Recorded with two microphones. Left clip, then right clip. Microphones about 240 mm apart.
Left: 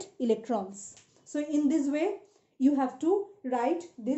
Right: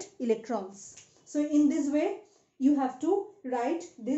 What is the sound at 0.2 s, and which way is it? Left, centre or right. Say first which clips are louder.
Speech: left 1 dB; left.